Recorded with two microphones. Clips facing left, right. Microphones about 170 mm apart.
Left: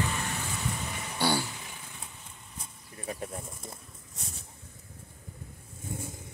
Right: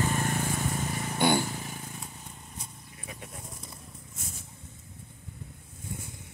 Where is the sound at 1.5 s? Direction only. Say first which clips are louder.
Right 7 dB; 45° right (ahead or behind).